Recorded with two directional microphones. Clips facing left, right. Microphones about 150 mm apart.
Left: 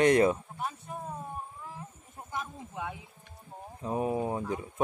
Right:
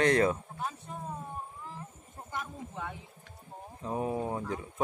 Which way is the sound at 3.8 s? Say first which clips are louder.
Left 2 dB; 15° left (ahead or behind).